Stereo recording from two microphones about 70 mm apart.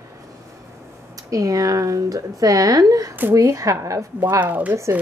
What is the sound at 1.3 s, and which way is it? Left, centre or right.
Speech, right.